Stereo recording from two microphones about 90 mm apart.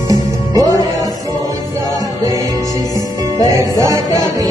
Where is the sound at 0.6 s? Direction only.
45° left (ahead or behind).